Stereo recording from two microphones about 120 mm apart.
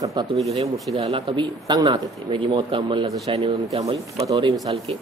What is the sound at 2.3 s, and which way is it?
Speech, 45° right (ahead or behind).